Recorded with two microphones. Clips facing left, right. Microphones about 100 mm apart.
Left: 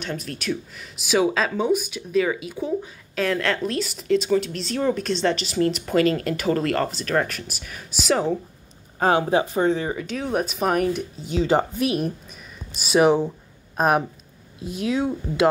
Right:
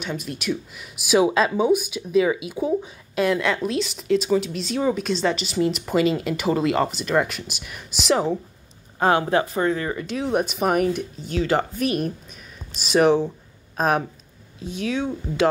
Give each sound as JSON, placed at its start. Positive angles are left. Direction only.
{"t": 0.0, "sound": "speech", "side_deg": -10}
{"t": 9.3, "sound": "speech", "side_deg": 15}
{"t": 9.9, "sound": "speech", "side_deg": 0}